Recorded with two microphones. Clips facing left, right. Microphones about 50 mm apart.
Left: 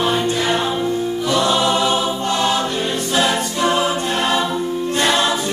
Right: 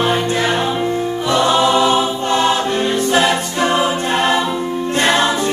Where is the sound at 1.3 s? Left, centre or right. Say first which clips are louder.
Right 4 dB; right.